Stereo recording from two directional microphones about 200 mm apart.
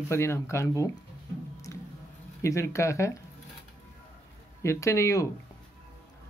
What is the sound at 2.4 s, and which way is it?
Speech, 15° left (ahead or behind).